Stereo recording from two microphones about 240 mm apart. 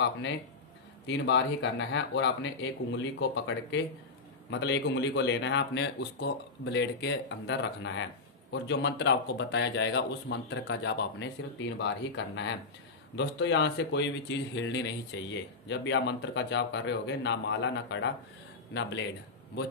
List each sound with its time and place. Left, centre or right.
1.0 s a man's voice: left